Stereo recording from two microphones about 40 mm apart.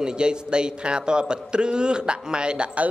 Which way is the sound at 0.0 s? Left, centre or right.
Right.